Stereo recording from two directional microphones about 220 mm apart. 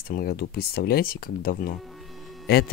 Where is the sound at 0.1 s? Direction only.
45° left (ahead or behind).